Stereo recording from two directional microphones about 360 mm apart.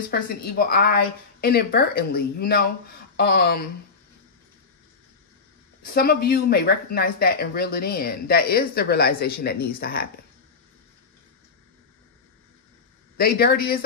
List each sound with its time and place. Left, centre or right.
0.1 s speech: left
5.8 s speech: left
13.2 s speech: left